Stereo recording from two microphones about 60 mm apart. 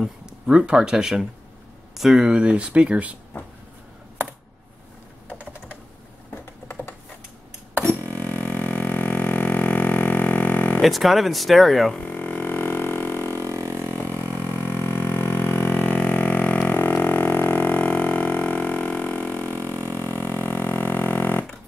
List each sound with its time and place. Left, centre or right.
0.5 s speech: centre
5.3 s typing: left
6.3 s computer keyboard: left
7.8 s a sound: right
8.3 s a sound: left
10.8 s speech: centre
12.0 s music: left
13.3 s a sound: right
14.0 s music: right
14.6 s music: left
19.5 s a sound: right
20.0 s music: left